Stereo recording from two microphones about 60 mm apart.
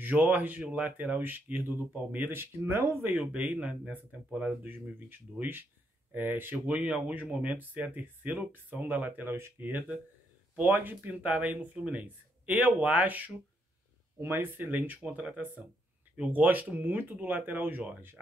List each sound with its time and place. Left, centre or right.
0.0 s speech: right
3.3 s speech: right
4.6 s speech: right